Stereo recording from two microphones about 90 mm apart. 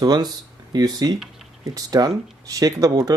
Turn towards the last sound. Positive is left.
turn(degrees=-45)  # may be behind; listen again after turning